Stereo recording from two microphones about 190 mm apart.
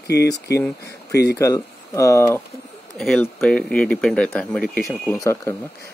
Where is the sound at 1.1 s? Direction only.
60° left (ahead or behind).